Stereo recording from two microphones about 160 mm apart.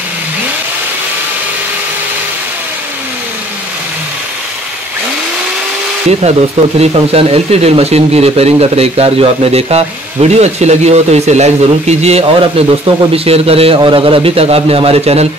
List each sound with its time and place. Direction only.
6.8 s speech: 40° right (ahead or behind)